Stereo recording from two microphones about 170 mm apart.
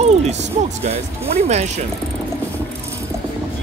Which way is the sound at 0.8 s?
40° right (ahead or behind).